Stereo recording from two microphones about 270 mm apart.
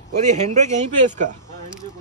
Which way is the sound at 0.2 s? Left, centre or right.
Right.